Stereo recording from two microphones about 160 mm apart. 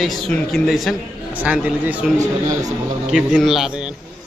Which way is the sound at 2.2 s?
20° right (ahead or behind).